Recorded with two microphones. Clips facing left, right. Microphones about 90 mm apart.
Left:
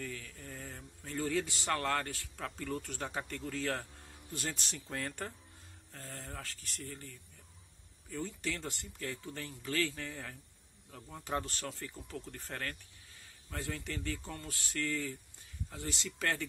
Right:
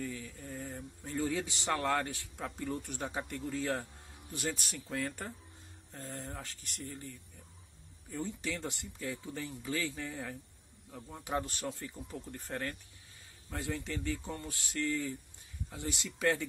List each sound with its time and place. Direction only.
0.0 s a man's voice: 15° right (ahead or behind)
4.7 s speech: 5° right (ahead or behind)
5.9 s speech: 20° right (ahead or behind)